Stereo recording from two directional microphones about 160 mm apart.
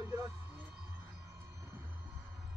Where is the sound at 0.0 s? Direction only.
20° right (ahead or behind).